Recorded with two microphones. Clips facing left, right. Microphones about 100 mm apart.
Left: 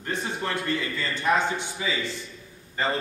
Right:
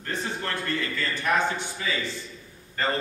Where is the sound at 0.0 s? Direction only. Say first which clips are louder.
Left 1 dB; 15° left (ahead or behind).